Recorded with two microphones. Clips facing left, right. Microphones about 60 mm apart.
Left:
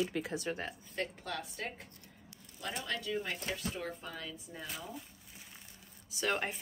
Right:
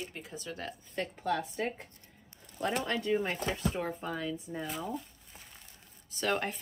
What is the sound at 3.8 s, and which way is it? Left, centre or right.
Speech, centre.